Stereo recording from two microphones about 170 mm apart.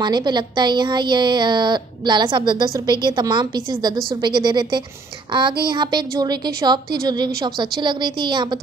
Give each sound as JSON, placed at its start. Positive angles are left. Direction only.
{"t": 0.0, "sound": "a woman's voice", "side_deg": -25}